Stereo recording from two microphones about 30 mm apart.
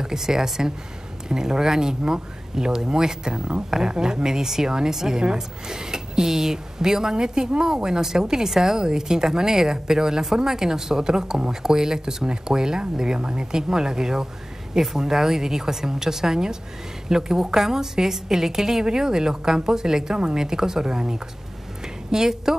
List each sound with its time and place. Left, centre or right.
0.0 s a woman's voice: centre
13.2 s speech: right
13.5 s a woman's voice: right